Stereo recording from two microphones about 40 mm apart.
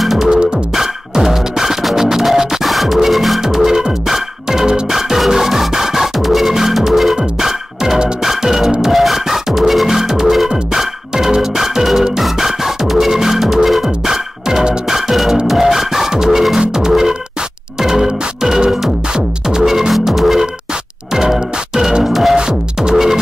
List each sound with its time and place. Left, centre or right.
0.0 s music: centre
0.3 s music: right
0.7 s music: centre
3.4 s music: centre
22.4 s music: centre